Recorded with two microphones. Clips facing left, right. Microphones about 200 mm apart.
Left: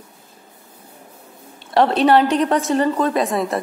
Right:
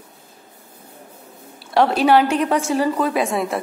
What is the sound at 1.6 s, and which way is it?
A woman's voice, centre (ahead or behind).